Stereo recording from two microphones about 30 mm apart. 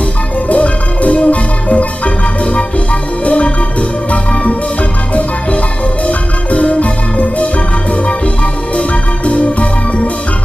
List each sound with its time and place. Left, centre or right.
0.5 s music: left
3.3 s music: left
6.0 s music: left
8.7 s music: left